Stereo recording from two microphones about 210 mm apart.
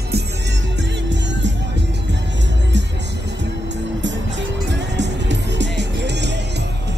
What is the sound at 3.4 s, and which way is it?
Music, 60° right (ahead or behind).